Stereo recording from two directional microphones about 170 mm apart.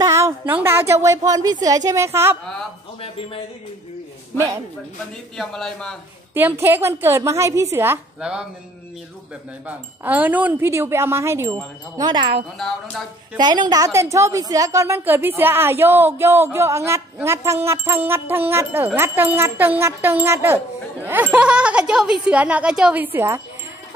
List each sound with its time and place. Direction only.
0.0 s a woman's voice: 15° right (ahead or behind)
3.0 s a sound: 30° left (ahead or behind)
5.4 s speech: 5° left (ahead or behind)
6.3 s a woman's voice: 15° right (ahead or behind)
9.7 s a woman's voice: 10° right (ahead or behind); by 12.4 s 30° right (ahead or behind)
12.5 s speech: centre (ahead or behind)
13.4 s a woman's voice: 25° right (ahead or behind)